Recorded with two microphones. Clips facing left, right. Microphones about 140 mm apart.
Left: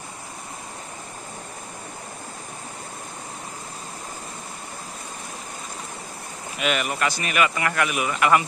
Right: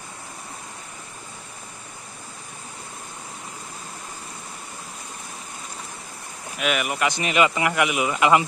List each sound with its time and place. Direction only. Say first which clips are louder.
6.6 s speech: right 1 dB; 5° right (ahead or behind)